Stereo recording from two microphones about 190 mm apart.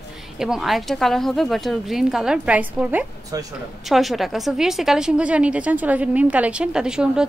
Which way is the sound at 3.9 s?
Centre (ahead or behind).